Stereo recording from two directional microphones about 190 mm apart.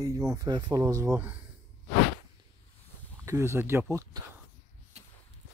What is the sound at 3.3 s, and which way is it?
Speech, 15° right (ahead or behind).